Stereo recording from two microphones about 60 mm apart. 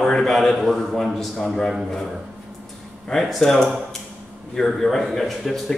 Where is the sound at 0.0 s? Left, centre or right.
Centre.